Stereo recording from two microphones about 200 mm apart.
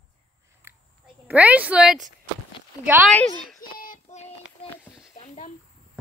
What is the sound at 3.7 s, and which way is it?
Child singing, 45° left (ahead or behind).